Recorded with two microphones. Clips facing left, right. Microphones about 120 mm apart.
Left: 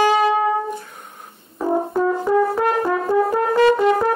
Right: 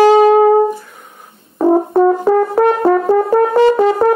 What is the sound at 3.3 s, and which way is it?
Brass instrument, 30° right (ahead or behind).